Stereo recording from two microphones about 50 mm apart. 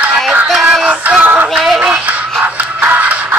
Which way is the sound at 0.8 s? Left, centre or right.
Right.